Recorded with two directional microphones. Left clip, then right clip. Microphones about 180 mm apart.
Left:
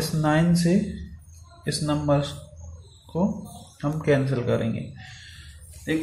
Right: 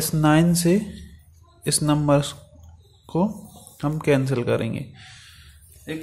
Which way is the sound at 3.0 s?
50° right (ahead or behind).